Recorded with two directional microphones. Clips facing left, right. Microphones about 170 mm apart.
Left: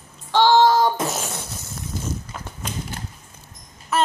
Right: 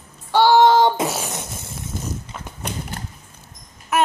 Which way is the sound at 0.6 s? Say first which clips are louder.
Right 3 dB; 25° right (ahead or behind).